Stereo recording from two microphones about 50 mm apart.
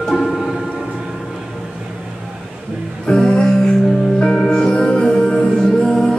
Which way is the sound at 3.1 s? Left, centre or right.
Centre.